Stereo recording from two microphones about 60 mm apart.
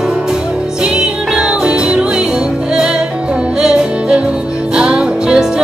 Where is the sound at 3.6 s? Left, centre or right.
Centre.